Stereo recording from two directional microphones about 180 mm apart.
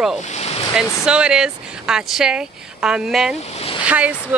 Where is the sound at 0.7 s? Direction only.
5° right (ahead or behind).